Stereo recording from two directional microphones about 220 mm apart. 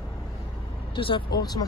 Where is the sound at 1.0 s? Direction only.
25° left (ahead or behind).